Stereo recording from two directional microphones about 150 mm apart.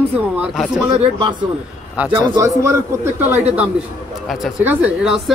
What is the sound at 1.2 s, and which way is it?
Speech, 30° right (ahead or behind).